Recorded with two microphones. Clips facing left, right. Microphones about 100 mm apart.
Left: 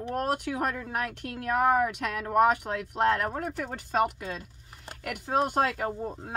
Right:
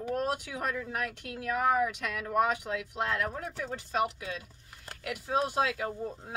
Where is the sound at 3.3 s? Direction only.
50° left (ahead or behind).